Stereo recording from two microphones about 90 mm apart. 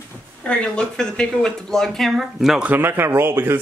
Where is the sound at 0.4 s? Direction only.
10° left (ahead or behind).